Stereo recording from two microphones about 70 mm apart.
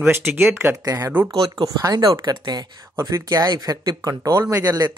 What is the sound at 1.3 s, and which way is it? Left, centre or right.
Speech, right.